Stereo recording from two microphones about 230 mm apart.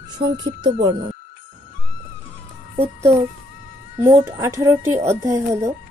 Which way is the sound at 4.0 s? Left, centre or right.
Centre.